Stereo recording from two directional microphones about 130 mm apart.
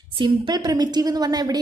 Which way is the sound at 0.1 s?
35° right (ahead or behind).